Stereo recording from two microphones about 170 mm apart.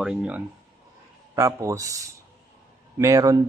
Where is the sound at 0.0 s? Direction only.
5° right (ahead or behind).